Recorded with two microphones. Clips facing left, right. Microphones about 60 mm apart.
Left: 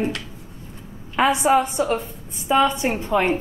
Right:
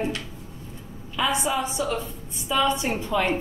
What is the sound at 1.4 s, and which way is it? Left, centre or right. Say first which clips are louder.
A woman's voice: left 8 dB; left.